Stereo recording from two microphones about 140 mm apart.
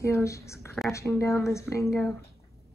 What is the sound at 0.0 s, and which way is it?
Speech, 20° left (ahead or behind).